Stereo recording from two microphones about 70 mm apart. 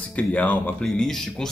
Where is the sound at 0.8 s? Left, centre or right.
Centre.